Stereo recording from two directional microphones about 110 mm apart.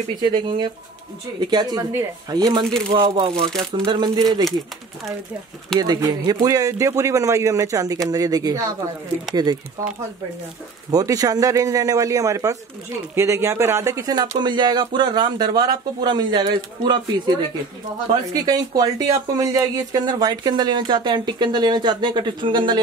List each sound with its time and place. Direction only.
0.2 s speech: 45° right (ahead or behind)
3.0 s speech: 55° right (ahead or behind)
3.7 s speech: 40° right (ahead or behind)
5.8 s speech: 40° right (ahead or behind)
10.9 s speech: 35° right (ahead or behind)
18.3 s speech: 35° right (ahead or behind)